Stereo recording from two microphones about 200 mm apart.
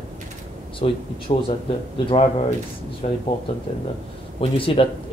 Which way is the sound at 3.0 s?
35° left (ahead or behind).